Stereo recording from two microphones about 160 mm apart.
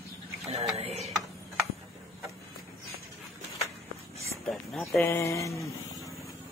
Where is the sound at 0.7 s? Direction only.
40° right (ahead or behind).